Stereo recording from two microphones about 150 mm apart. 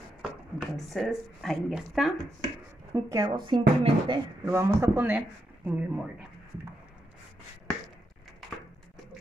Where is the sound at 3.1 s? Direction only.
30° right (ahead or behind).